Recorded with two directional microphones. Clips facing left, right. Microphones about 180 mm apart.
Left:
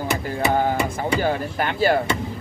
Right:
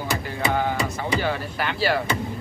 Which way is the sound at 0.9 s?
45° left (ahead or behind).